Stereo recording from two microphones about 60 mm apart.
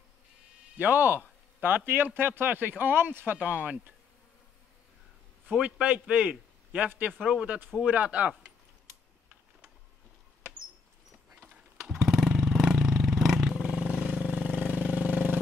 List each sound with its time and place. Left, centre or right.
0.7 s speech: right
5.5 s a man's voice: right
8.3 s a sound: centre
11.8 s motorcycle: centre
14.3 s vehicle: right